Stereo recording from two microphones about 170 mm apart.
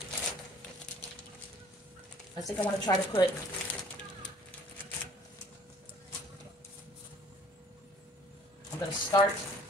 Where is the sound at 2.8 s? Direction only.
25° left (ahead or behind).